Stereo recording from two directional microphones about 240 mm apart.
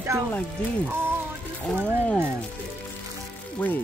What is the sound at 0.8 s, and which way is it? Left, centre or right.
Music, centre.